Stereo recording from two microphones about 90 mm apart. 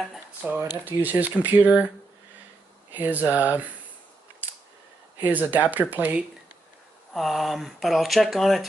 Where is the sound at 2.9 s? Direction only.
20° right (ahead or behind).